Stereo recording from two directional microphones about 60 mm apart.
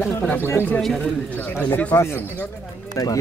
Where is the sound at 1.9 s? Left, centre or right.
Left.